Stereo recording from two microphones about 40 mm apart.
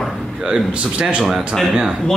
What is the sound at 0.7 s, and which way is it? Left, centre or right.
Speech, right.